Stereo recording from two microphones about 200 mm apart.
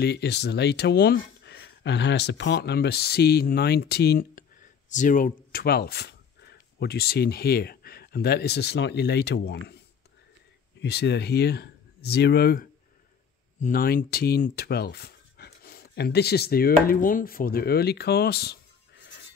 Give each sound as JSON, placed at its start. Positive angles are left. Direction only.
{"t": 0.0, "sound": "speech", "side_deg": 55}
{"t": 10.8, "sound": "speech", "side_deg": 55}